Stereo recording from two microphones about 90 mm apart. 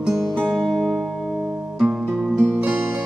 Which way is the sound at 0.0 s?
5° right (ahead or behind).